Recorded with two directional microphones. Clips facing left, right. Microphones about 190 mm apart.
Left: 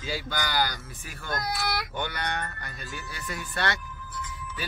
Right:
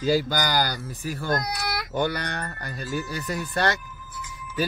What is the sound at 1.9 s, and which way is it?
Speech, 35° right (ahead or behind).